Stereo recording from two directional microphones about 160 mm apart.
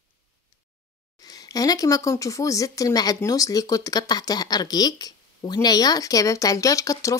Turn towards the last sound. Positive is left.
turn(degrees=20)  # may be behind; listen again after turning